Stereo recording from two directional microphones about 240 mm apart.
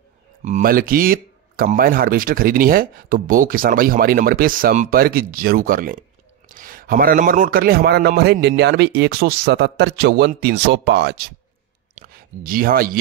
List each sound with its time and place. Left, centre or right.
0.4 s a man's voice: right